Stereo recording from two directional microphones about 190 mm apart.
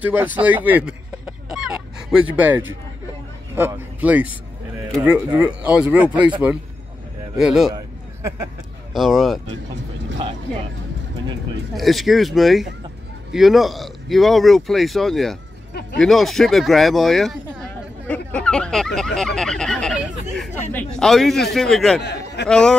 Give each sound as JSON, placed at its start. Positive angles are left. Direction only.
{"t": 0.0, "sound": "a sound", "side_deg": -10}
{"t": 2.3, "sound": "a man's voice", "side_deg": -10}
{"t": 7.3, "sound": "speech", "side_deg": 0}
{"t": 8.9, "sound": "speech", "side_deg": 0}
{"t": 11.7, "sound": "speech", "side_deg": 0}
{"t": 19.1, "sound": "fowl", "side_deg": 0}
{"t": 20.7, "sound": "speech", "side_deg": 0}
{"t": 22.0, "sound": "a sound", "side_deg": 60}
{"t": 22.5, "sound": "speech", "side_deg": 5}